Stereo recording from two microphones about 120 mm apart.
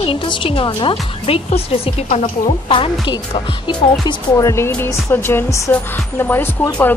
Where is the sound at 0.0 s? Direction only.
50° left (ahead or behind); by 2.5 s 65° left (ahead or behind).